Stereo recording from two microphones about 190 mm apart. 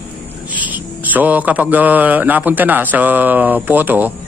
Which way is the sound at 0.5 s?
10° right (ahead or behind).